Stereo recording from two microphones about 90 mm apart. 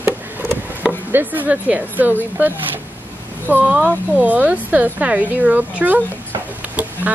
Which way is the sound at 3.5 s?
15° right (ahead or behind).